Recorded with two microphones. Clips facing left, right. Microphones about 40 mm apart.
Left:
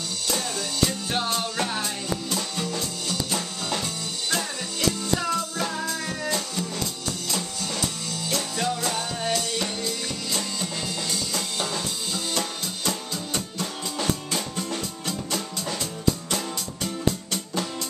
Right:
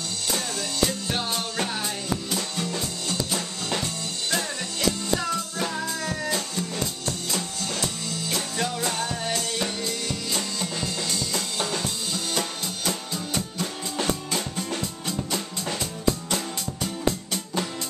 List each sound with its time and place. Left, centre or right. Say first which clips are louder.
0.3 s music: left 1 dB; centre
2.7 s music: even; right
3.8 s music: even; centre
8.3 s music: left 2 dB; centre
11.1 s drum kit: even; centre
14.3 s music: even; centre
16.3 s music: even; centre